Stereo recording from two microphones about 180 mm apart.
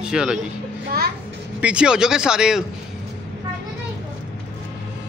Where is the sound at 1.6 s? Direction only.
5° right (ahead or behind).